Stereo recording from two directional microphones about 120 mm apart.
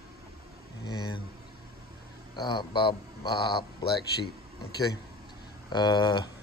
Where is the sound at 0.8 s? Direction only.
40° left (ahead or behind).